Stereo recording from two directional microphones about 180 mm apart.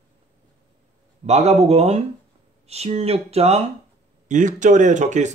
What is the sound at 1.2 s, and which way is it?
Speech, 35° right (ahead or behind).